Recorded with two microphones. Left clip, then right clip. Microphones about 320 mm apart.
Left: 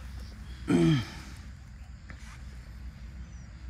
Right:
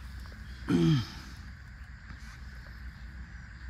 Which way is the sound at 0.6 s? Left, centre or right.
Centre.